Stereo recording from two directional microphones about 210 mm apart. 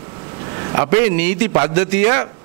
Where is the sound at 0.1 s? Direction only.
20° right (ahead or behind).